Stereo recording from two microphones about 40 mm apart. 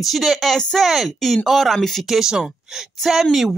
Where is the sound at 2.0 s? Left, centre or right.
Centre.